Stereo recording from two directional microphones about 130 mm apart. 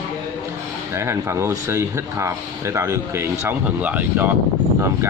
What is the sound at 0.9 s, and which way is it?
Speech, 20° right (ahead or behind).